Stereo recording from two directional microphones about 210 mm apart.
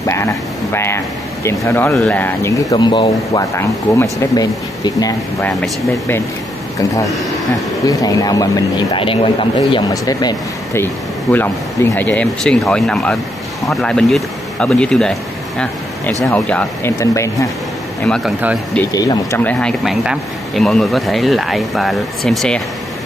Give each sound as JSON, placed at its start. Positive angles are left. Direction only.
{"t": 0.0, "sound": "speech", "side_deg": 10}
{"t": 7.4, "sound": "speech", "side_deg": 15}
{"t": 16.3, "sound": "speech", "side_deg": 5}
{"t": 18.0, "sound": "speech", "side_deg": 5}
{"t": 18.8, "sound": "speech", "side_deg": 15}